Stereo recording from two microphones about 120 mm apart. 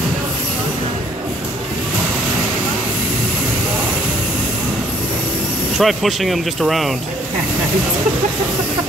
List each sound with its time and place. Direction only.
5.8 s speech: centre (ahead or behind)